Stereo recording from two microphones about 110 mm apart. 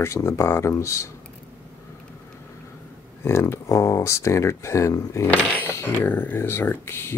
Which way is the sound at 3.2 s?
25° left (ahead or behind).